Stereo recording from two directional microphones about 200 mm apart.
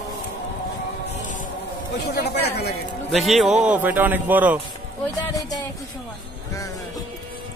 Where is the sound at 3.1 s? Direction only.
Centre (ahead or behind).